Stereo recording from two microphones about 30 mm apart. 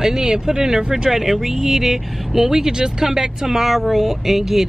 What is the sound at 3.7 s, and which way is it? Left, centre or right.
Speech, centre.